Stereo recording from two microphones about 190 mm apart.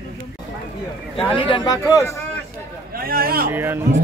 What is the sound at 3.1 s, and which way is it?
Speech, 50° right (ahead or behind).